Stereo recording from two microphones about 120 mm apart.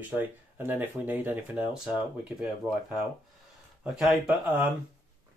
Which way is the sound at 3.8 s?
Centre (ahead or behind).